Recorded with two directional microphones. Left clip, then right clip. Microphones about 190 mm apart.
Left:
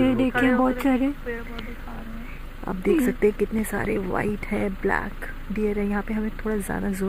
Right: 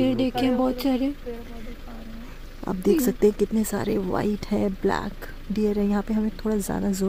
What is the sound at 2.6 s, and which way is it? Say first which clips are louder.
Speech: even; 55° right (ahead or behind).